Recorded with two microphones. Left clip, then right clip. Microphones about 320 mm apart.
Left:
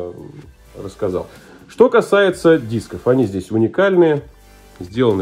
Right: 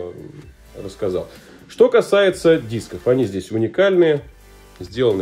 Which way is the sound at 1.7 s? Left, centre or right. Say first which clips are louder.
Left 1 dB; centre.